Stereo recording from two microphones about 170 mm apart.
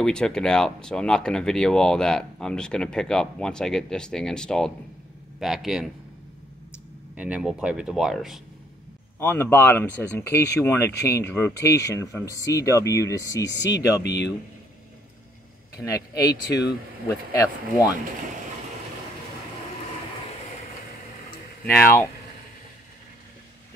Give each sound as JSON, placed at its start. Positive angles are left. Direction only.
{"t": 0.0, "sound": "speech", "side_deg": 5}
{"t": 7.2, "sound": "speech", "side_deg": -5}
{"t": 9.2, "sound": "speech", "side_deg": 10}
{"t": 14.0, "sound": "speech", "side_deg": 85}
{"t": 15.7, "sound": "speech", "side_deg": 20}